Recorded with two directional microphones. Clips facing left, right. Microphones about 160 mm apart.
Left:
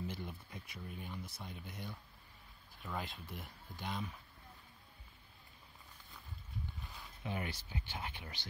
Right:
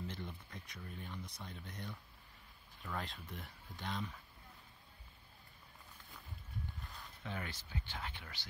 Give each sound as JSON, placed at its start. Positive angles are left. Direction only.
{"t": 0.0, "sound": "speech", "side_deg": 10}
{"t": 6.8, "sound": "a sound", "side_deg": 0}
{"t": 7.2, "sound": "speech", "side_deg": 10}